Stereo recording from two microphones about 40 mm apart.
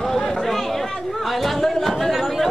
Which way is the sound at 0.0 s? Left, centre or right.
Centre.